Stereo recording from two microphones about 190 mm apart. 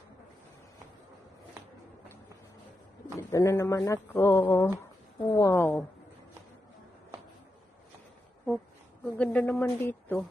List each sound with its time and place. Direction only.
3.2 s speech: 15° left (ahead or behind)
9.0 s speech: 5° left (ahead or behind)